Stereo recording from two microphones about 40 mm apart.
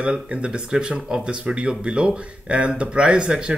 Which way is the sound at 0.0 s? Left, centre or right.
Right.